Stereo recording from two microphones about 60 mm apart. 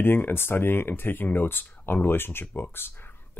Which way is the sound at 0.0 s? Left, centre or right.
Left.